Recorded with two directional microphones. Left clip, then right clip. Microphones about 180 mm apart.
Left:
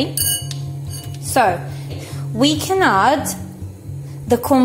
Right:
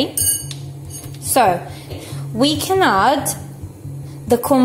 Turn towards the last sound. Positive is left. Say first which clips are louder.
# even
turn(degrees=0)  # may be behind; listen again after turning